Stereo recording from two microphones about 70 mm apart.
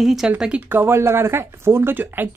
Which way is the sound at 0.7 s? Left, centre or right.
Right.